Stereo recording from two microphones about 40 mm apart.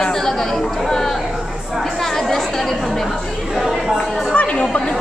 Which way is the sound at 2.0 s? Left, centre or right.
Centre.